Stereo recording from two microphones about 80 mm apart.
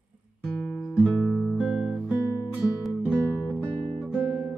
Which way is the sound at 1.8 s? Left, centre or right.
Centre.